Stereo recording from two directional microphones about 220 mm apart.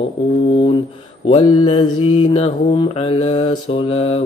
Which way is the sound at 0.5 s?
25° left (ahead or behind).